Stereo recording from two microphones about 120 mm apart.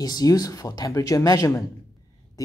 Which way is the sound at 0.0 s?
30° left (ahead or behind).